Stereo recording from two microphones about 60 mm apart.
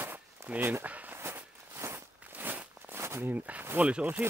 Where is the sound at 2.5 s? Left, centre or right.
Right.